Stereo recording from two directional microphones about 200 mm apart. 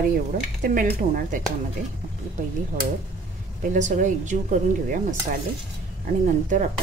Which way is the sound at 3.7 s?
40° right (ahead or behind).